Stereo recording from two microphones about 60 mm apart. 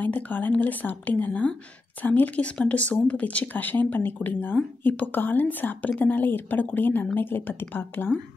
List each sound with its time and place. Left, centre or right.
0.0 s speech: left